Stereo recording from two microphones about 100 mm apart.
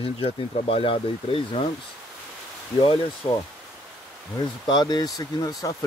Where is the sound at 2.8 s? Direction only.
60° left (ahead or behind).